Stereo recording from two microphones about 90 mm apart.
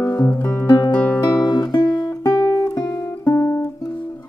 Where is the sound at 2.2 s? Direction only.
40° left (ahead or behind).